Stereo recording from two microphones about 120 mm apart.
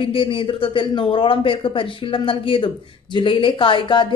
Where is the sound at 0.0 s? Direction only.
50° left (ahead or behind).